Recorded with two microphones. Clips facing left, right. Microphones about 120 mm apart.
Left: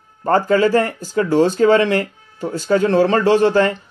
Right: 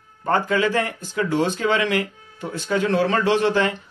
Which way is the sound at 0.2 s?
40° left (ahead or behind).